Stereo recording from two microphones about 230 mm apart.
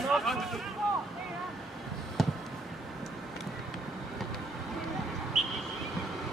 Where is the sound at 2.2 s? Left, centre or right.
Centre.